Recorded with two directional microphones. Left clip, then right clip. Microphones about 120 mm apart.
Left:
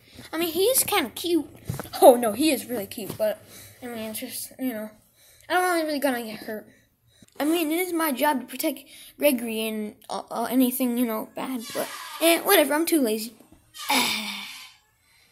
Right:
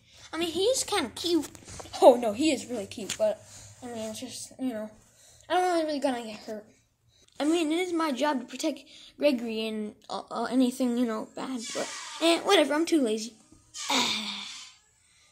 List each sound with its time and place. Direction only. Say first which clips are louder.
0.2 s a child's voice: left 4 dB; 20° left (ahead or behind)
10.6 s a woman's voice: left 2 dB; 5° left (ahead or behind)
13.8 s gasp: left 3 dB; 10° left (ahead or behind)